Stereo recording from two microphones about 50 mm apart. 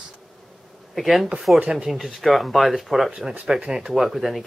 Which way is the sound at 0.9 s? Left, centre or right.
Centre.